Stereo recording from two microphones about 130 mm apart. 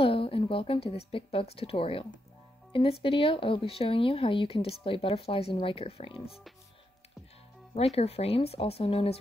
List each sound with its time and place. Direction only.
0.0 s speech: 45° left (ahead or behind)
7.7 s speech: 50° left (ahead or behind)